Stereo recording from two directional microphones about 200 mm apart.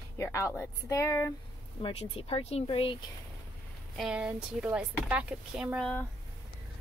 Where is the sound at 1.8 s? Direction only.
25° left (ahead or behind).